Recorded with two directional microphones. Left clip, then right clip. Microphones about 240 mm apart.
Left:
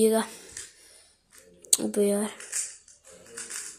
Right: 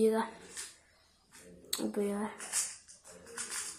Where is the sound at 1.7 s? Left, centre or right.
Left.